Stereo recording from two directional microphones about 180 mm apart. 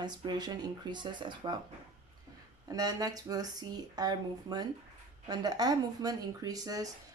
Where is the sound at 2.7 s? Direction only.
20° right (ahead or behind).